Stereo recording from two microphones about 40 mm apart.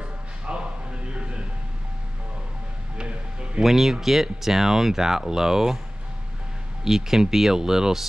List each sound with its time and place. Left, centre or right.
0.0 s a sound: right
1.1 s music: right
3.0 s music: right
3.6 s speech: centre
6.8 s speech: centre